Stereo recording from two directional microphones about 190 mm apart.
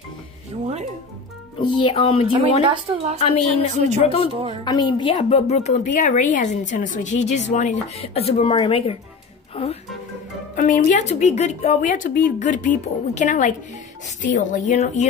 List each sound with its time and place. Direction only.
1.6 s speech: 25° left (ahead or behind)
2.6 s a woman's voice: 30° right (ahead or behind)
3.2 s a woman's voice: 35° left (ahead or behind)
10.5 s a woman's voice: 40° left (ahead or behind)